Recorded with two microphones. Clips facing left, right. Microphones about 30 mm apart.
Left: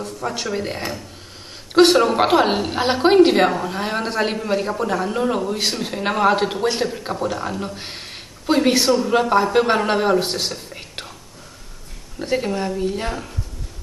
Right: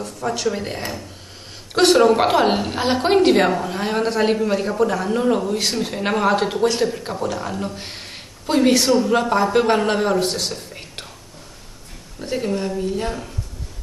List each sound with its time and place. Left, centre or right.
0.2 s a woman's voice: centre
10.7 s whispering: centre
12.2 s a woman's voice: centre